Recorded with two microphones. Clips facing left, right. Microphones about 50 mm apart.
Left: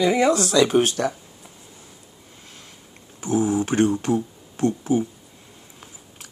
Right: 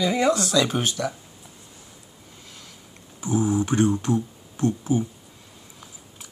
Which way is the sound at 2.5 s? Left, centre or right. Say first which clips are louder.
Left 1 dB; left.